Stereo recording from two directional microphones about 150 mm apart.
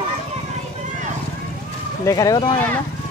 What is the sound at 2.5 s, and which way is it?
Speech, 15° left (ahead or behind).